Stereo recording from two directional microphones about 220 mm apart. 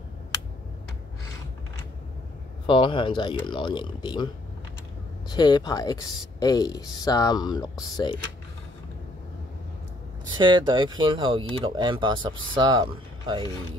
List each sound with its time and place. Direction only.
2.6 s speech: 20° left (ahead or behind)
5.3 s speech: 20° left (ahead or behind)
10.3 s speech: 20° right (ahead or behind)